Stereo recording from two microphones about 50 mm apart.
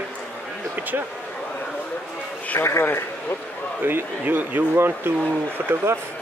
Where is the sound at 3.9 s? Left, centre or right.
Right.